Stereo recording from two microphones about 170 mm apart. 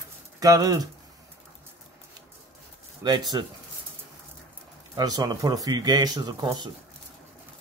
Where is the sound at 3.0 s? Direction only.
25° right (ahead or behind).